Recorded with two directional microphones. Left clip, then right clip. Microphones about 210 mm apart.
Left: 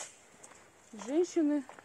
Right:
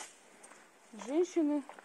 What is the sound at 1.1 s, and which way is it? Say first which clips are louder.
Speech: left 1 dB; 30° left (ahead or behind).